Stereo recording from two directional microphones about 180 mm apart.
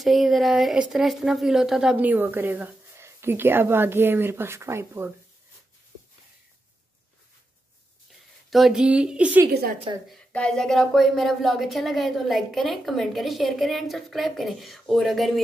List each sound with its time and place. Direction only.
0.0 s speech: centre (ahead or behind)
8.5 s a woman's voice: centre (ahead or behind)
9.5 s a woman's voice: 60° right (ahead or behind)
10.1 s a woman's voice: 5° left (ahead or behind)